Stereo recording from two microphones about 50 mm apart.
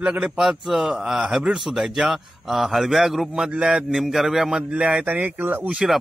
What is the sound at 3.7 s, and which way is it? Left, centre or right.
Speech, centre.